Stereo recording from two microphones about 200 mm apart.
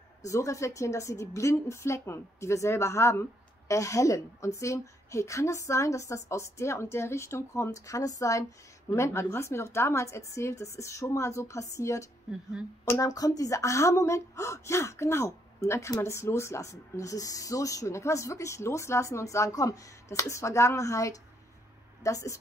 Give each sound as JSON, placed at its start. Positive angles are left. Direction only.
{"t": 0.3, "sound": "a woman's voice", "side_deg": 15}